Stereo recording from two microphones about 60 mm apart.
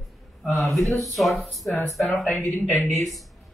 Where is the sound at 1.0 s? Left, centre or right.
Centre.